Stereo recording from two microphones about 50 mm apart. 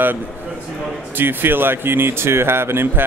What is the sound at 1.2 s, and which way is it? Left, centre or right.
Speech, right.